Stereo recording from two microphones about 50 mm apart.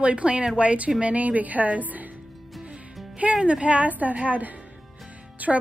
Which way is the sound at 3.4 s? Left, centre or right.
Right.